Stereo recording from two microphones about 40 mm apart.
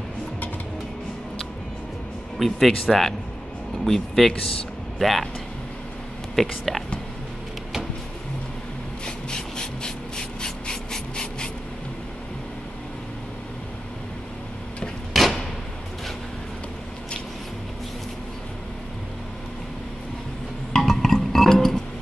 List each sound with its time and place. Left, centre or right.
2.3 s speech: centre
4.3 s speech: left
4.9 s speech: centre
6.3 s speech: centre
9.0 s rub: centre
15.2 s a sound: centre
20.7 s music: centre